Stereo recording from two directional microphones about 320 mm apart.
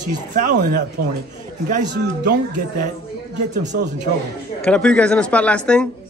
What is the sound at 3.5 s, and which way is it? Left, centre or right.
Speech, right.